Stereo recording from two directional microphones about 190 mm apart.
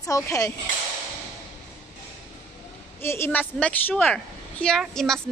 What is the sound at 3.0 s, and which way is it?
A woman's voice, 15° left (ahead or behind).